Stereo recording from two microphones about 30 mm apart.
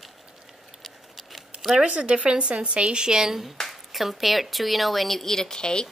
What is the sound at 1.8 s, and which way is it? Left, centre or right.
Speech, right.